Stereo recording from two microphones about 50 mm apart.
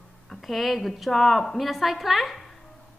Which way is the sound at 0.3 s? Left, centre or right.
Centre.